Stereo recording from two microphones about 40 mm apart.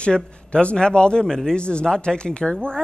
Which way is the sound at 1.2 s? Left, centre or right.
Centre.